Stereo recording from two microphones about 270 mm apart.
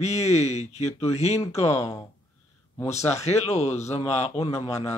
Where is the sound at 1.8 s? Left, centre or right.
Centre.